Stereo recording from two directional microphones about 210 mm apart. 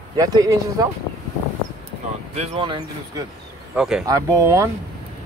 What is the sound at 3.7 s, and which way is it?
Speech, 5° right (ahead or behind).